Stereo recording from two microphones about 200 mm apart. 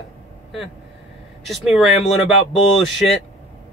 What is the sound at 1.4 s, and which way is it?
Speech, centre (ahead or behind).